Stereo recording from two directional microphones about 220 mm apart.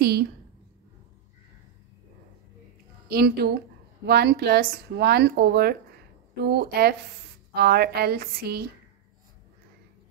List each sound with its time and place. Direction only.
0.0 s a woman's voice: 45° right (ahead or behind)
3.1 s speech: 45° right (ahead or behind)